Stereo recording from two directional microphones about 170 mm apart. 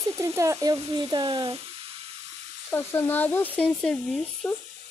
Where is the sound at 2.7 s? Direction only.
15° left (ahead or behind).